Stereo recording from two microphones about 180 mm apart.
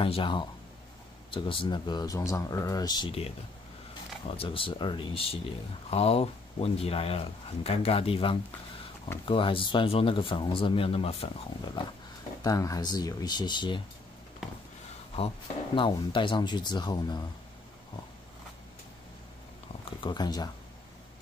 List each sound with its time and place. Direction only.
0.0 s speech: 30° left (ahead or behind)
15.1 s speech: 30° left (ahead or behind)
19.8 s speech: 25° left (ahead or behind)